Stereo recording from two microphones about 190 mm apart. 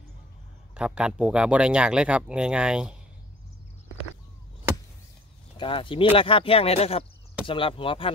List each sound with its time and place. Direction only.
0.7 s speech: 5° right (ahead or behind)
5.6 s speech: 25° left (ahead or behind)